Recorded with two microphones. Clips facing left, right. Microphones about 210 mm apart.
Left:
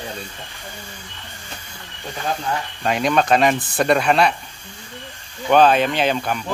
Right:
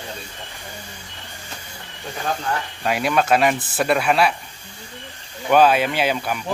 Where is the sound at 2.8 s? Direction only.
5° right (ahead or behind).